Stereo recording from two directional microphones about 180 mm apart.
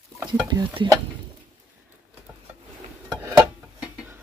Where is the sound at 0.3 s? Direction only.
25° right (ahead or behind).